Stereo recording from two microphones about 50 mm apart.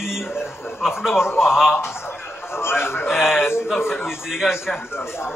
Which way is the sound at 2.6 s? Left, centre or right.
Left.